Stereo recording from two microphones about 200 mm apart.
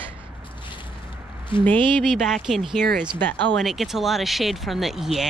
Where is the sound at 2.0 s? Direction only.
5° right (ahead or behind).